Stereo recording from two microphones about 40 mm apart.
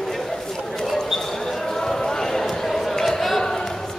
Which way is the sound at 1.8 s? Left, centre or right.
Centre.